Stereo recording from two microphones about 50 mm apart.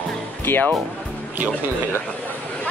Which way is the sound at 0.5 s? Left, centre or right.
Left.